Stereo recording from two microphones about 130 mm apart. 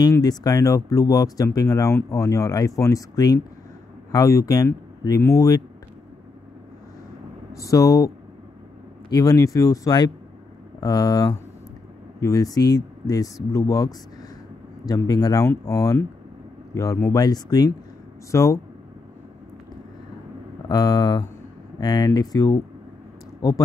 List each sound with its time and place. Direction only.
0.0 s speech: 30° left (ahead or behind)
7.5 s speech: 25° left (ahead or behind)
9.1 s speech: 25° left (ahead or behind)
20.6 s speech: 30° left (ahead or behind)